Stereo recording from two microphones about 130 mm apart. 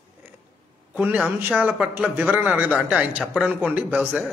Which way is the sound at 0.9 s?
10° right (ahead or behind).